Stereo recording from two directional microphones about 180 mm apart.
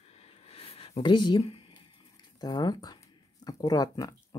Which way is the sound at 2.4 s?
20° left (ahead or behind).